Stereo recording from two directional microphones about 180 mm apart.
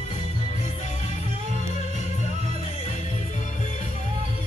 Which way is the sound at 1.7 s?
40° left (ahead or behind).